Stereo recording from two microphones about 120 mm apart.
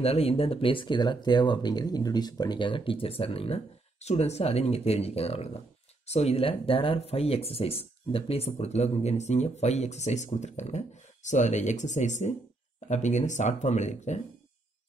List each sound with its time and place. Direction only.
0.0 s speech: 55° left (ahead or behind); by 14.2 s 75° left (ahead or behind)